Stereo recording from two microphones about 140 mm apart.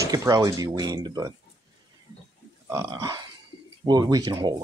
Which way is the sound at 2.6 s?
25° right (ahead or behind).